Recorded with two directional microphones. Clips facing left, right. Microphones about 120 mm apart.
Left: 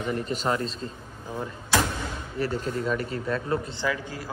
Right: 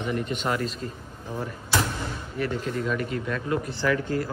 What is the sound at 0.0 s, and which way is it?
Speech, 35° left (ahead or behind).